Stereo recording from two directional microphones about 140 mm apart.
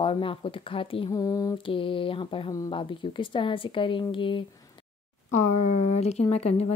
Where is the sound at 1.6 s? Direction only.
40° left (ahead or behind).